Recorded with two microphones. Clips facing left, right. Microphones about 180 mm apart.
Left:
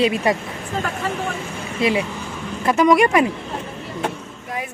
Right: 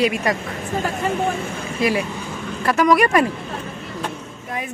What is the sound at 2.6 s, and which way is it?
Speech, 20° left (ahead or behind).